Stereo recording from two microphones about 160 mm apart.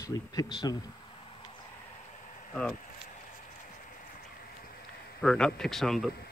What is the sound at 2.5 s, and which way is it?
Speech, 5° left (ahead or behind).